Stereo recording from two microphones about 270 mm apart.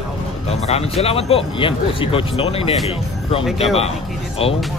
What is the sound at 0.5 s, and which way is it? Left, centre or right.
Speech, left.